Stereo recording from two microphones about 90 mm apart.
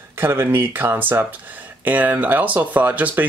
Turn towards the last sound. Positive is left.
turn(degrees=-20)  # may be behind; listen again after turning